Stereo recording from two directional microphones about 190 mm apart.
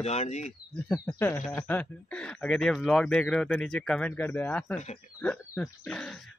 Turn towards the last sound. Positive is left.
turn(degrees=5)  # may be behind; listen again after turning